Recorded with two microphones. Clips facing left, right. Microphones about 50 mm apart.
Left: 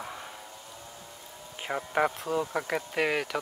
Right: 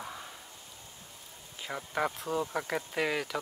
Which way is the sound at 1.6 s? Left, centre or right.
Left.